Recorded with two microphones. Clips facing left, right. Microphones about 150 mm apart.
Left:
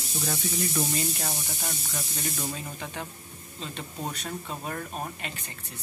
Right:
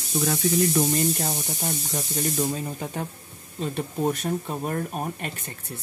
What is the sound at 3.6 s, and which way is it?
Speech, 50° right (ahead or behind).